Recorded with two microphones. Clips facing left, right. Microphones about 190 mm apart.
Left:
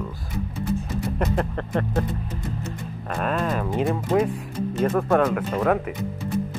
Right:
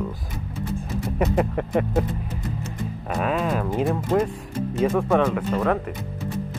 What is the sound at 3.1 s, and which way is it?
Speech, 5° right (ahead or behind).